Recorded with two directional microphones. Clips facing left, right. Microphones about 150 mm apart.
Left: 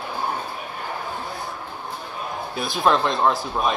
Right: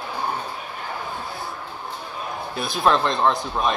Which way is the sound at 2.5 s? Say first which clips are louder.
Even; centre (ahead or behind).